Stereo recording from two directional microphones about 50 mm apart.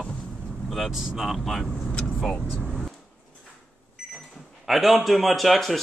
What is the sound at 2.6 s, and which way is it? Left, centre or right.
Vehicle, centre.